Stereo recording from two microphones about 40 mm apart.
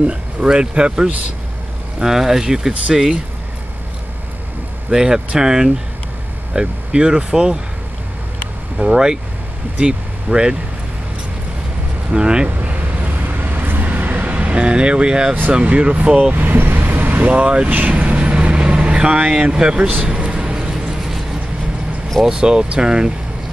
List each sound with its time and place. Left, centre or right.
0.0 s speech: right
2.0 s speech: centre
4.9 s speech: centre
8.7 s speech: right
12.1 s speech: right
12.6 s vehicle: right
14.2 s speech: right
16.5 s vehicle: right
17.3 s speech: right
17.7 s vehicle: right
19.4 s speech: right
20.2 s a sound: right
21.0 s vehicle: centre
22.3 s speech: right